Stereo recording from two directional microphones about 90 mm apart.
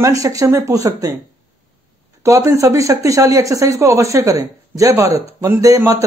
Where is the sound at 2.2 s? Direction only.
35° right (ahead or behind).